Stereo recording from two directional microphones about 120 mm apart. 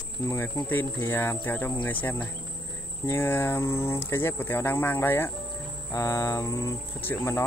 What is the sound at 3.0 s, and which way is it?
Speech, 20° left (ahead or behind).